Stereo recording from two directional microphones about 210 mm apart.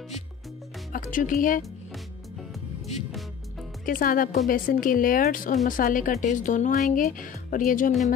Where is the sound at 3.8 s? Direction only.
40° left (ahead or behind).